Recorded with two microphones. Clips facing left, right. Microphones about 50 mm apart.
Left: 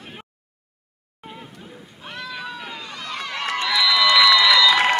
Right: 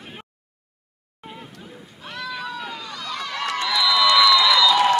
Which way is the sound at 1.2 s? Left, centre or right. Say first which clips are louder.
Even; centre.